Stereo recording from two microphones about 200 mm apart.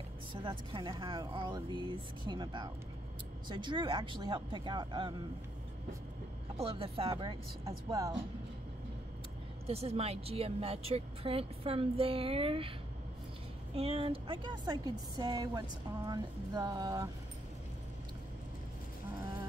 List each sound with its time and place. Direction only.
0.3 s speech: 25° right (ahead or behind)
6.6 s speech: 30° right (ahead or behind)
9.7 s speech: 30° right (ahead or behind)
13.7 s speech: 30° right (ahead or behind)